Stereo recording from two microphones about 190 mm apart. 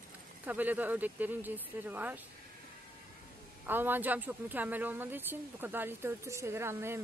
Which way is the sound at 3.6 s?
10° right (ahead or behind).